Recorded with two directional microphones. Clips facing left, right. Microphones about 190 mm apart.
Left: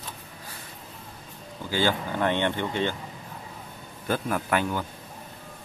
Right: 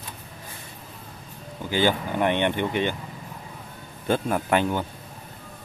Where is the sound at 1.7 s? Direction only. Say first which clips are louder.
Right 3 dB; 15° right (ahead or behind).